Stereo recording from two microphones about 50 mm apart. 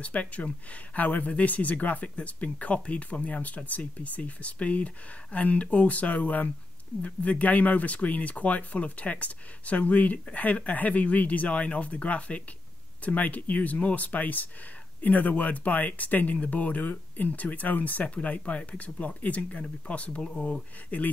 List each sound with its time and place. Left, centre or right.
0.0 s speech: left